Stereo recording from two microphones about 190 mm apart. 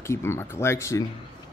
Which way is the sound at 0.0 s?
15° left (ahead or behind).